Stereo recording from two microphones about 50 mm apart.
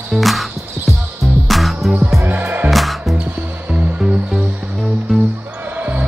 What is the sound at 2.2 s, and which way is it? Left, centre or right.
Music, right.